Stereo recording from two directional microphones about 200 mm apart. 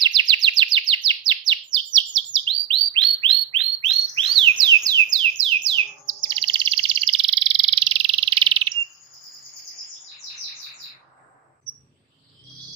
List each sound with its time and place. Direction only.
0.0 s chirp: 20° right (ahead or behind)
4.2 s bird: 25° right (ahead or behind)